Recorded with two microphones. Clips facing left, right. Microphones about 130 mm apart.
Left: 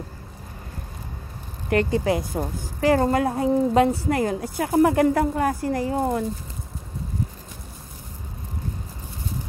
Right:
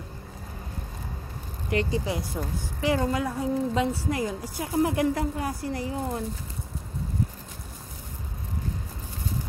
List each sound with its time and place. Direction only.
1.7 s a woman's voice: 55° left (ahead or behind)